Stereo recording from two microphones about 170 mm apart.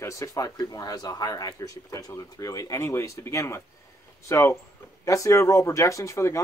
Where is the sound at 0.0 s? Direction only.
20° left (ahead or behind).